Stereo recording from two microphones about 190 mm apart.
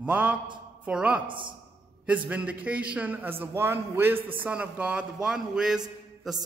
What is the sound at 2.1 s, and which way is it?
A man's voice, 5° right (ahead or behind).